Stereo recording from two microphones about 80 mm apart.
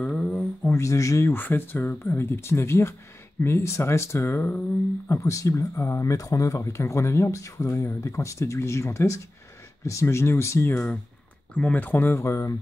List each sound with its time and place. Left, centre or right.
0.0 s a sound: centre
0.7 s speech: left
1.3 s speech: left
11.5 s speech: centre; by 12.5 s left